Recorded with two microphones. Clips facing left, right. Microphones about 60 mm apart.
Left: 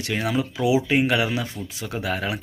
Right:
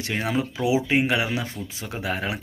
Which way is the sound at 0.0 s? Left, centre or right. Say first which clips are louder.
Left 1 dB; right.